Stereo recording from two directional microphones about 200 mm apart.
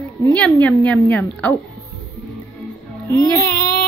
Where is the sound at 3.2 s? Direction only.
15° left (ahead or behind).